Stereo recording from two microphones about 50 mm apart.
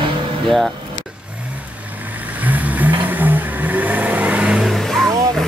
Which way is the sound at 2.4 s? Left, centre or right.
Right.